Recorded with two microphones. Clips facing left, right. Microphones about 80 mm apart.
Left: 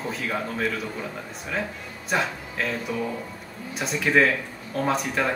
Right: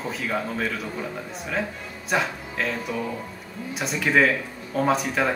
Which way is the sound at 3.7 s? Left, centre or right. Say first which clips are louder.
Even; centre.